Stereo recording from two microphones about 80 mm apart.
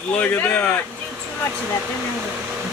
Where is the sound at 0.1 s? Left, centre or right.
Centre.